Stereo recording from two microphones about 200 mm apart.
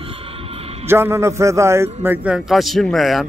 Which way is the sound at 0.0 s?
30° right (ahead or behind).